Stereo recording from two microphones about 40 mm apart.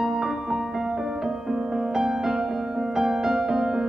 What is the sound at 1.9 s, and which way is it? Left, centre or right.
Music, centre.